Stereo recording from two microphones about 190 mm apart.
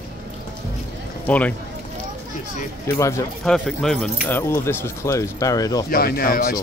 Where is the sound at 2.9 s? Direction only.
15° left (ahead or behind).